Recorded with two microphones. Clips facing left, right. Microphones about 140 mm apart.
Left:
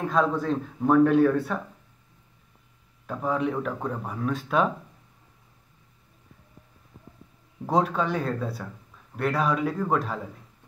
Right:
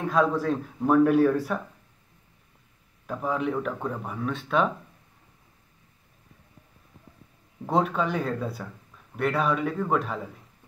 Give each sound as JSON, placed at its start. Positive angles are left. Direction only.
{"t": 0.0, "sound": "speech", "side_deg": 0}
{"t": 3.1, "sound": "speech", "side_deg": 0}
{"t": 7.7, "sound": "speech", "side_deg": 0}